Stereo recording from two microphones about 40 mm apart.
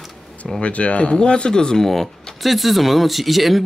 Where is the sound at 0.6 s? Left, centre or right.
Left.